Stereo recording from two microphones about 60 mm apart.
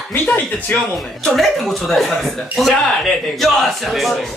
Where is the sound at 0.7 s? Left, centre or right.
Left.